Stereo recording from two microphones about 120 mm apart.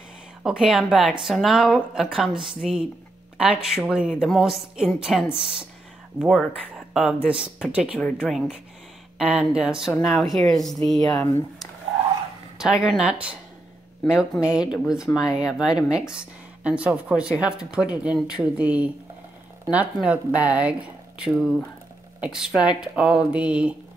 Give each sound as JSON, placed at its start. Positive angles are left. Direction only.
{"t": 0.4, "sound": "a woman's voice", "side_deg": -5}
{"t": 11.0, "sound": "speech", "side_deg": 35}
{"t": 12.5, "sound": "a woman's voice", "side_deg": -5}
{"t": 14.4, "sound": "a woman's voice", "side_deg": -5}